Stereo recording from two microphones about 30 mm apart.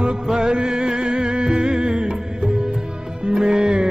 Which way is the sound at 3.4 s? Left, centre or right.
Right.